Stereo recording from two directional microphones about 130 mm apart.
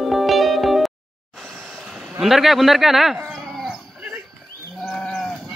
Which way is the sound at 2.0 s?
Centre (ahead or behind).